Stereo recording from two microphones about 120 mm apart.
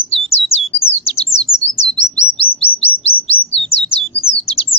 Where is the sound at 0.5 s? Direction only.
55° left (ahead or behind).